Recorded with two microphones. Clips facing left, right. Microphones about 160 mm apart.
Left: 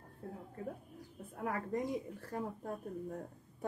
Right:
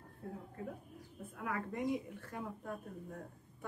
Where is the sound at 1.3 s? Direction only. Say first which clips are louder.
Left 3 dB; 35° left (ahead or behind).